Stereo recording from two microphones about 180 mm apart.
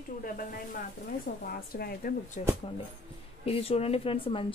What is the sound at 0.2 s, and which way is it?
Speech, 50° left (ahead or behind).